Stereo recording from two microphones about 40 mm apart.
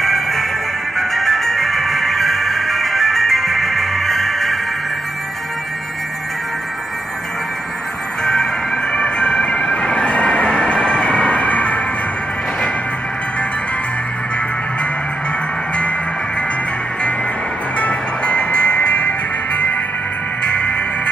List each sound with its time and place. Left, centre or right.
0.0 s music: centre
8.2 s music: centre
8.9 s train: left
17.7 s music: left
18.5 s music: left
20.5 s music: left